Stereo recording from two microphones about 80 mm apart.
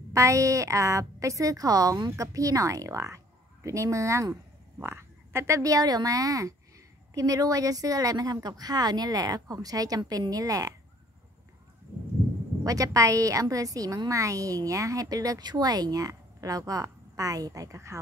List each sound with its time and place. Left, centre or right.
0.1 s a woman's voice: right
5.6 s a woman's voice: right
12.6 s a woman's voice: right